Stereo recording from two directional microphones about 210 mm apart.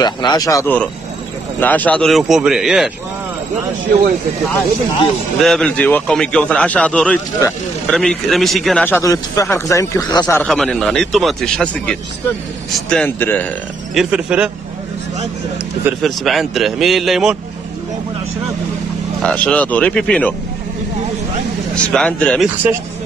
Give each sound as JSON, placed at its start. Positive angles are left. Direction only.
{"t": 0.0, "sound": "a man's voice", "side_deg": 20}
{"t": 5.4, "sound": "a man's voice", "side_deg": 5}
{"t": 10.2, "sound": "a man's voice", "side_deg": 5}
{"t": 13.9, "sound": "a man's voice", "side_deg": -5}
{"t": 16.0, "sound": "a man's voice", "side_deg": 0}
{"t": 19.2, "sound": "speech", "side_deg": 5}
{"t": 21.7, "sound": "a man's voice", "side_deg": 5}